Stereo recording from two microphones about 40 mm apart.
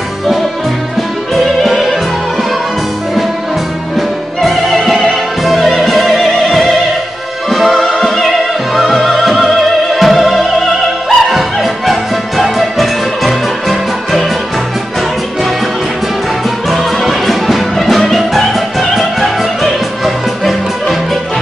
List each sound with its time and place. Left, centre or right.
1.3 s music: centre
4.4 s music: centre
7.4 s music: centre
7.8 s music: left
8.7 s music: centre
16.7 s music: centre